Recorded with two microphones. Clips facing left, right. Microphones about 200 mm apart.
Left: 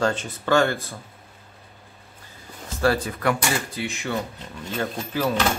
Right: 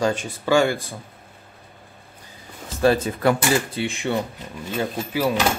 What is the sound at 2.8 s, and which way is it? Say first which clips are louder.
Speech: right 4 dB; 20° right (ahead or behind).